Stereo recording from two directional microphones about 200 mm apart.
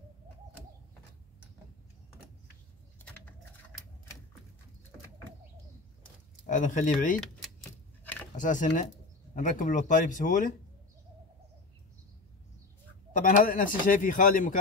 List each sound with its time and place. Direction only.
6.4 s a man's voice: 40° left (ahead or behind)
8.0 s a sound: 10° left (ahead or behind)
8.4 s a man's voice: 40° left (ahead or behind)
13.2 s a man's voice: 40° left (ahead or behind)